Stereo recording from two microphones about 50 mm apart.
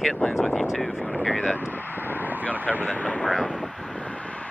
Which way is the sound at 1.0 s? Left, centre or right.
Left.